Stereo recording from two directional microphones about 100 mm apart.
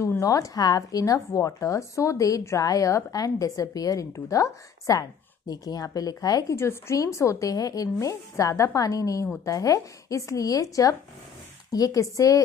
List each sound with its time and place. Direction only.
0.2 s a woman's voice: 35° left (ahead or behind)
6.5 s a woman's voice: 25° left (ahead or behind)